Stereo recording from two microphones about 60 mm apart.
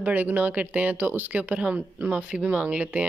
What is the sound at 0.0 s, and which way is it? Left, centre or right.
Speech, right.